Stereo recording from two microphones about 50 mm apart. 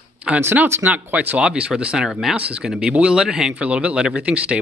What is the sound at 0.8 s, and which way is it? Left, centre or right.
Speech, right.